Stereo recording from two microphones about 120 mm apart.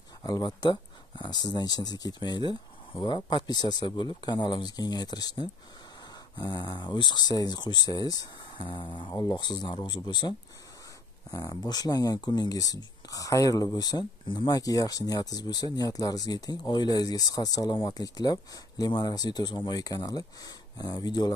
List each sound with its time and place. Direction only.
0.2 s speech: 35° left (ahead or behind)
11.3 s speech: 35° left (ahead or behind)